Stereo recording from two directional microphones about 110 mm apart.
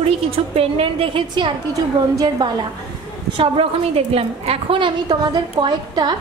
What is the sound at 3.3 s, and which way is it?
A woman's voice, 55° right (ahead or behind).